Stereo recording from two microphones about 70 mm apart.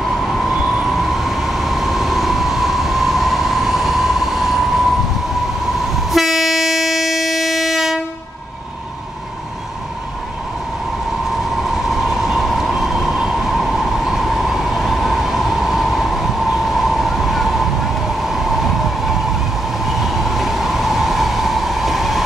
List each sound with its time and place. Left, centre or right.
0.2 s train: centre
5.9 s train: centre
11.9 s train: centre